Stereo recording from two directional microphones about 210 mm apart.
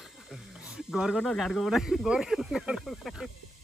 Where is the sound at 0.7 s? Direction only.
Centre (ahead or behind).